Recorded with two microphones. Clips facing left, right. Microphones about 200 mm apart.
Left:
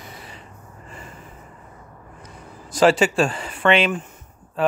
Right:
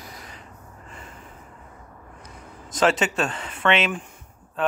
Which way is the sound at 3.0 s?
5° left (ahead or behind).